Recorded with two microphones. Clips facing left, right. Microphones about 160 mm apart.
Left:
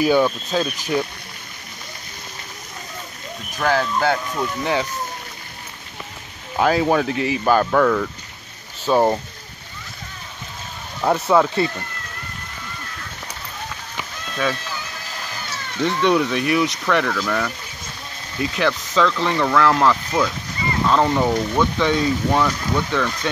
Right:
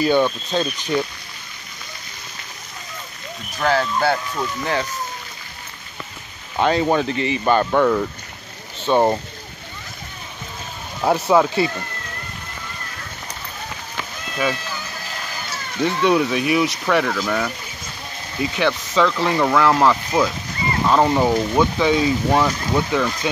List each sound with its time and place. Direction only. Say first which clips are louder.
0.0 s speech: left 1 dB; 5° left (ahead or behind)
3.8 s speech: even; centre (ahead or behind)
6.6 s speech: even; centre (ahead or behind)
7.8 s speech: even; 15° right (ahead or behind)
8.8 s speech: even; centre (ahead or behind)
11.0 s speech: right 1 dB; 5° right (ahead or behind)
14.3 s speech: right 1 dB; 5° right (ahead or behind)
15.8 s speech: right 1 dB; 5° right (ahead or behind)